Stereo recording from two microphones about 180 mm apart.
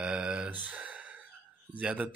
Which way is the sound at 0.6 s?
10° right (ahead or behind).